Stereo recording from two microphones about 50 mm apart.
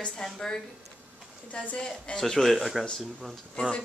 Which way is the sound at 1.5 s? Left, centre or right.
Left.